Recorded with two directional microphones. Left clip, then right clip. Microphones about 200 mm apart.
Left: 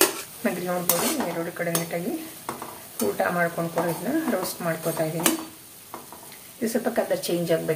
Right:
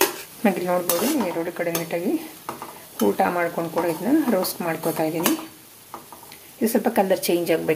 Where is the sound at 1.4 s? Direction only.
45° right (ahead or behind).